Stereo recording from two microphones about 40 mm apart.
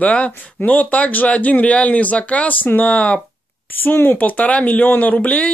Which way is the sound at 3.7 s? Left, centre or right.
Left.